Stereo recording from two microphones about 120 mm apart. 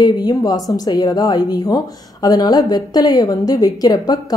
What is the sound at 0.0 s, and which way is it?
A woman's voice, 35° left (ahead or behind).